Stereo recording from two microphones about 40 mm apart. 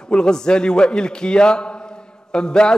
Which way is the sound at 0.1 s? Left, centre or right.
Centre.